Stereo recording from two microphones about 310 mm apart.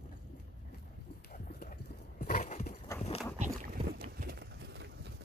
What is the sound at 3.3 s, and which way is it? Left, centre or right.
Boat, right.